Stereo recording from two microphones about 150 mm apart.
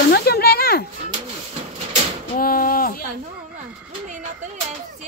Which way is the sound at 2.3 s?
75° left (ahead or behind).